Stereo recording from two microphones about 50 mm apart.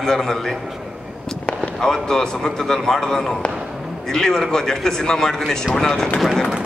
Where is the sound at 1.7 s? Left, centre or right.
Centre.